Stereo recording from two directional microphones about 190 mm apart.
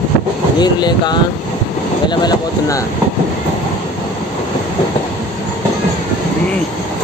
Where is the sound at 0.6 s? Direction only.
20° left (ahead or behind).